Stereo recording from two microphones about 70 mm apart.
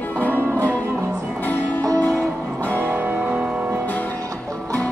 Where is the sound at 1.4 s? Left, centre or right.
Left.